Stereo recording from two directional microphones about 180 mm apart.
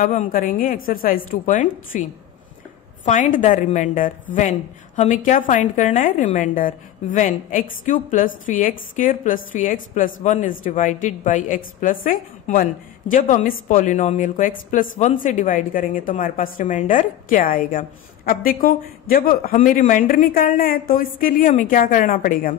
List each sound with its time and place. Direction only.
0.3 s a woman's voice: 50° left (ahead or behind)
3.1 s a woman's voice: 45° left (ahead or behind)